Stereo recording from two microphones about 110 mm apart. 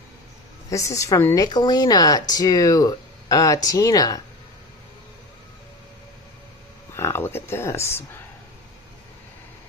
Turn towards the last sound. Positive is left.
turn(degrees=25)  # may be behind; listen again after turning